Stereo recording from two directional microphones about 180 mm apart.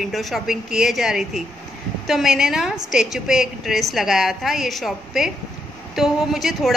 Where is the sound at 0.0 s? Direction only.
Centre (ahead or behind).